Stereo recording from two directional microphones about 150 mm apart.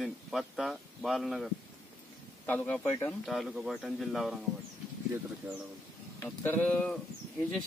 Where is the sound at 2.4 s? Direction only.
10° left (ahead or behind).